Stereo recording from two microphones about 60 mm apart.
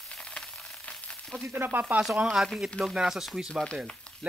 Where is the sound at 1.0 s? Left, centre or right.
Centre.